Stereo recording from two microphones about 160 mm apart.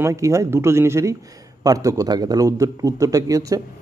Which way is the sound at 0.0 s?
20° right (ahead or behind).